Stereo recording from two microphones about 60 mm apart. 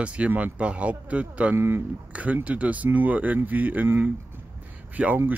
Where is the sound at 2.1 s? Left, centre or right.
Right.